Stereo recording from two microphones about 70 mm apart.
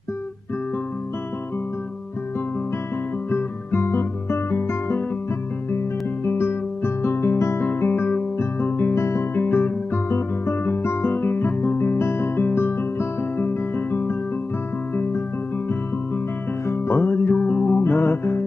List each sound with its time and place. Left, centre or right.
3.3 s guitar: left
6.2 s music: left
9.4 s guitar: left
16.6 s music: left